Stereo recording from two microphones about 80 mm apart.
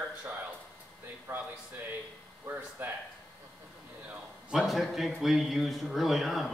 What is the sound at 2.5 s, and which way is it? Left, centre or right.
Speech, right.